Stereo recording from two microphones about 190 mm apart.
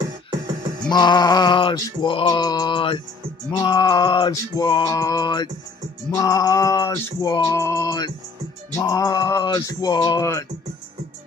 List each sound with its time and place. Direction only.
0.8 s male singing: 20° left (ahead or behind)